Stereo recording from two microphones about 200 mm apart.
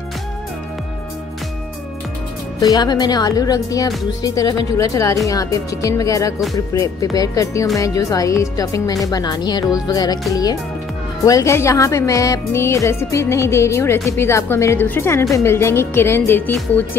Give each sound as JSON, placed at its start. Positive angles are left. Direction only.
{"t": 2.6, "sound": "speech", "side_deg": 20}
{"t": 9.8, "sound": "music", "side_deg": 20}
{"t": 10.3, "sound": "speech", "side_deg": 15}